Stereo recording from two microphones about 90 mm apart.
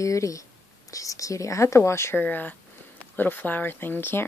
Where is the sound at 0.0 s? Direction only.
35° left (ahead or behind).